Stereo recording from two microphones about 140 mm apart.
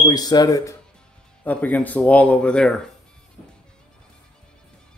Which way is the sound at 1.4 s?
10° left (ahead or behind).